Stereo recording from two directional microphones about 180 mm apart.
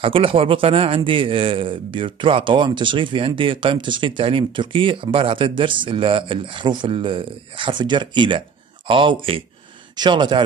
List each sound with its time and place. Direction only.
0.0 s speech: 30° right (ahead or behind)